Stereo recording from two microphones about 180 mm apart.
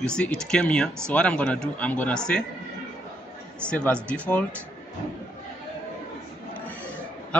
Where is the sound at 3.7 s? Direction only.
5° left (ahead or behind).